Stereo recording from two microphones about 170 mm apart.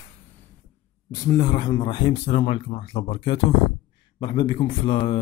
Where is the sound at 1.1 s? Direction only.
20° left (ahead or behind).